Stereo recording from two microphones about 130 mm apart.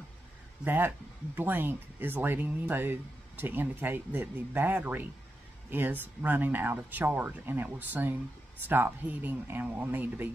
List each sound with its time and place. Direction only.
0.7 s speech: 15° right (ahead or behind)